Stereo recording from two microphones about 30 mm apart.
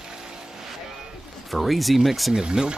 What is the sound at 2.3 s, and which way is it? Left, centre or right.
Speech, right.